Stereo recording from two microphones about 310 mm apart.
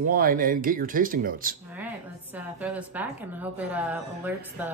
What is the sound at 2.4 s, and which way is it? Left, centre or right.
A woman's voice, centre.